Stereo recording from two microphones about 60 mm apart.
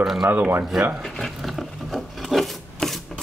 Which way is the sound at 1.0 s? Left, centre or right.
Centre.